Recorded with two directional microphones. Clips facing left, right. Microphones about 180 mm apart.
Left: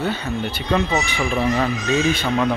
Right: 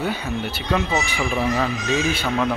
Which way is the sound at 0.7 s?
Centre (ahead or behind).